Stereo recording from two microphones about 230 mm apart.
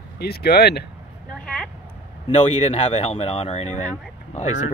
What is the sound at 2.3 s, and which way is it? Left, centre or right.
Speech, left.